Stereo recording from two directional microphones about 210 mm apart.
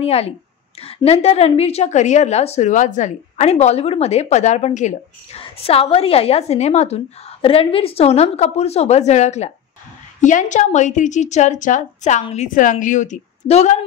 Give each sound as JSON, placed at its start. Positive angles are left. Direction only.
{"t": 0.0, "sound": "a woman's voice", "side_deg": 30}